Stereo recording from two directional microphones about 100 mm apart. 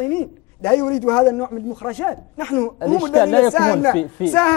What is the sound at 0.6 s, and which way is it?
Speech, 15° left (ahead or behind).